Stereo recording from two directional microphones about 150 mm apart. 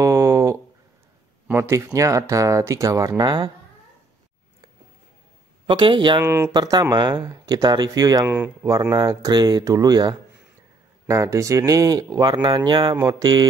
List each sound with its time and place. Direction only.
0.0 s a sound: 20° right (ahead or behind)
2.0 s speech: 20° right (ahead or behind)
5.7 s speech: 30° right (ahead or behind)
6.2 s speech: 15° right (ahead or behind)
6.5 s speech: 25° right (ahead or behind)
8.3 s speech: 10° right (ahead or behind)
8.9 s speech: 25° right (ahead or behind)